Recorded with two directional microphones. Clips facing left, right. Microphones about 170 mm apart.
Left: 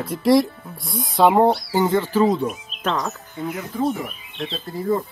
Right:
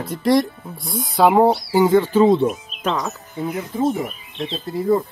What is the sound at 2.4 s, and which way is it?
Speech, 5° right (ahead or behind).